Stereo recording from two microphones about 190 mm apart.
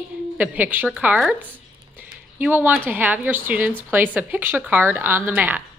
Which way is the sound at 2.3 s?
10° right (ahead or behind).